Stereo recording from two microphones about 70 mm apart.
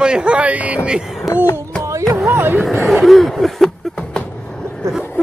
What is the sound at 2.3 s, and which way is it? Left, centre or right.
Speech, right.